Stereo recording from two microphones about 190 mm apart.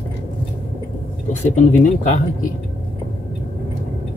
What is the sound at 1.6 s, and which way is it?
Speech, 40° left (ahead or behind).